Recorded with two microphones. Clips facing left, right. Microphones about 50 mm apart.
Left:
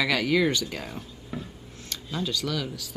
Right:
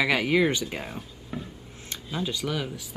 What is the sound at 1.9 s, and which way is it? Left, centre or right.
Speech, centre.